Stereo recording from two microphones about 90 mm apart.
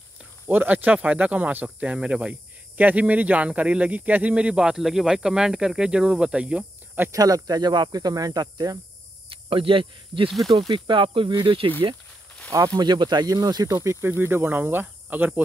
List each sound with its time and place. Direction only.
0.5 s speech: 20° right (ahead or behind)
7.1 s speech: 40° right (ahead or behind)
9.3 s speech: 80° right
12.5 s speech: 40° right (ahead or behind)
12.8 s speech: 55° right (ahead or behind)
14.0 s speech: 25° right (ahead or behind)